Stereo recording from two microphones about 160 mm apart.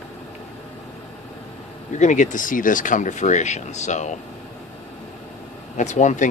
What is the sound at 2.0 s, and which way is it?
Speech, 50° left (ahead or behind).